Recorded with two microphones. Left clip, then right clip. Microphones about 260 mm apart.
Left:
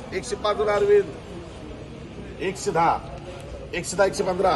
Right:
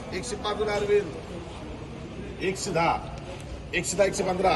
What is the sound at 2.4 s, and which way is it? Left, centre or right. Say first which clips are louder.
Speech: left 3 dB; centre.